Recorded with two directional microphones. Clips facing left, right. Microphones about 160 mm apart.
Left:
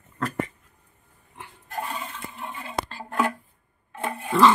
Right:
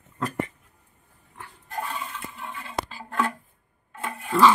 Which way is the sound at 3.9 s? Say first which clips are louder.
Left 4 dB; 25° left (ahead or behind).